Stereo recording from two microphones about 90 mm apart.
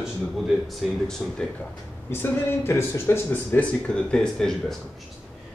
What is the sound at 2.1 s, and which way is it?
Speech, 25° left (ahead or behind).